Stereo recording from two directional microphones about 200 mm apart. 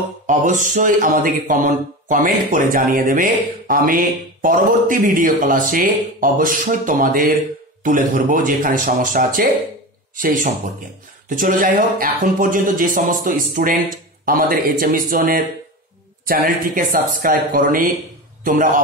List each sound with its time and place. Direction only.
0.3 s a man's voice: 40° right (ahead or behind)